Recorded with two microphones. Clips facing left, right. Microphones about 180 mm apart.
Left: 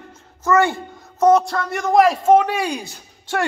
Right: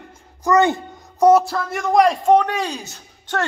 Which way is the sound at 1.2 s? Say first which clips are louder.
Right 1 dB; 5° right (ahead or behind).